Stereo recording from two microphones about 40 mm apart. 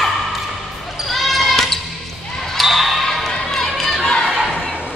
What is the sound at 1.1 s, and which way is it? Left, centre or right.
Basketball bounce, centre.